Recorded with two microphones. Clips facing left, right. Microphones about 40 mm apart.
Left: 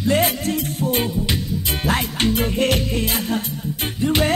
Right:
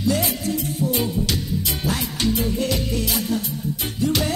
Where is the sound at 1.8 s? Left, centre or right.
Left.